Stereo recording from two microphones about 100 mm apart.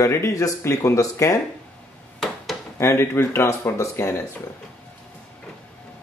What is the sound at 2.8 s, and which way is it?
Speech, 25° left (ahead or behind).